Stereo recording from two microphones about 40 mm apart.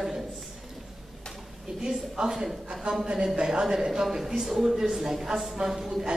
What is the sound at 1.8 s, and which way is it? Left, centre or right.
A woman's voice, centre.